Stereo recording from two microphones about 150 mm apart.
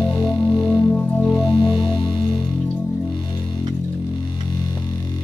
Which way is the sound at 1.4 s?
30° left (ahead or behind).